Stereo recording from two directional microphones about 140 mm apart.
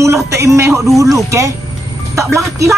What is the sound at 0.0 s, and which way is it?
Speech, 20° right (ahead or behind).